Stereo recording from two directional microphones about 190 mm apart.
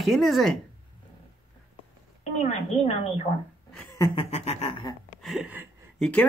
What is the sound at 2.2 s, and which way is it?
Speech, 35° left (ahead or behind).